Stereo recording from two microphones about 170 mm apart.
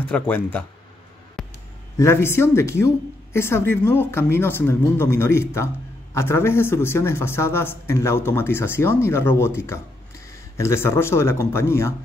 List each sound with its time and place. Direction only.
0.0 s a man's voice: 10° left (ahead or behind)
1.4 s a sound: centre (ahead or behind)
2.0 s a man's voice: 15° left (ahead or behind)